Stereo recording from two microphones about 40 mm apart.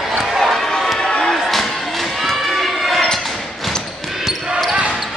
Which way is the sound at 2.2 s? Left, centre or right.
Centre.